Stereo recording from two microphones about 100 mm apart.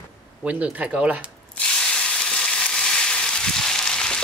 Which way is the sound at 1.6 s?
10° left (ahead or behind).